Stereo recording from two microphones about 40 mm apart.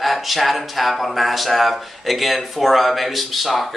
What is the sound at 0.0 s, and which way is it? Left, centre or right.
Speech, centre.